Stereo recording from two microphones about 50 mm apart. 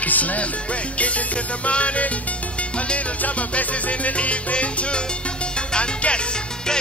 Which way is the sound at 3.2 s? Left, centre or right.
Left.